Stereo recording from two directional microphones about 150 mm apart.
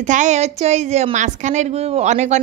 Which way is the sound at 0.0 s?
55° right (ahead or behind).